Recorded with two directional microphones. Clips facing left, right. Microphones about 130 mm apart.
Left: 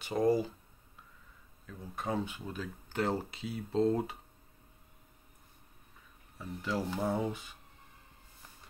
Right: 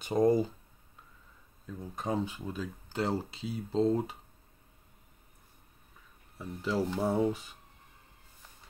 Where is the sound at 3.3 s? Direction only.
30° right (ahead or behind).